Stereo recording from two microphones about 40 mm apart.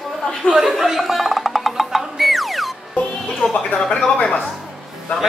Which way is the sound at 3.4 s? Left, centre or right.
Left.